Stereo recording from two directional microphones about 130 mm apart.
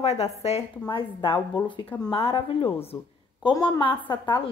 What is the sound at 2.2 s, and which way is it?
Speech, 45° left (ahead or behind).